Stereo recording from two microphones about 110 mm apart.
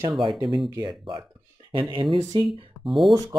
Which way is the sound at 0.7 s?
35° right (ahead or behind).